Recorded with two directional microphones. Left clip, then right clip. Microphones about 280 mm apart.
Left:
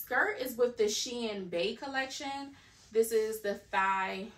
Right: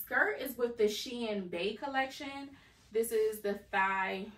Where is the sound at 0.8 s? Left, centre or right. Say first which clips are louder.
Left 1 dB; centre.